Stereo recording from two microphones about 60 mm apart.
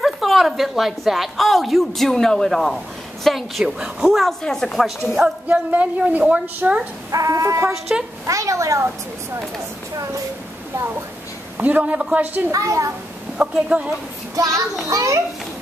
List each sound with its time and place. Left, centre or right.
0.0 s a woman's voice: centre
4.3 s speech: centre
4.8 s a woman's voice: centre
5.5 s a woman's voice: right
7.1 s speech: right
7.9 s speech: centre
8.3 s a child's voice: right
11.5 s a woman's voice: right
12.5 s speech: right
13.4 s speech: centre
14.3 s a child's voice: right